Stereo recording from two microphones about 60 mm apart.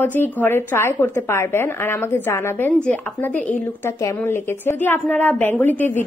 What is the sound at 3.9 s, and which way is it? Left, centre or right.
Speech, left.